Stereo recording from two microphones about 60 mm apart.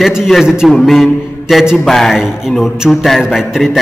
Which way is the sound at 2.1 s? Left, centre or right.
Centre.